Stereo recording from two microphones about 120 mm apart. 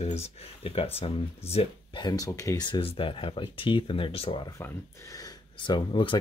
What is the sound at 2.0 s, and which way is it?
Speech, 35° left (ahead or behind).